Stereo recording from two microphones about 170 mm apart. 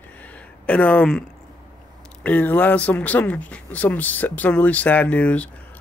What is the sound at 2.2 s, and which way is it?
Speech, 10° left (ahead or behind).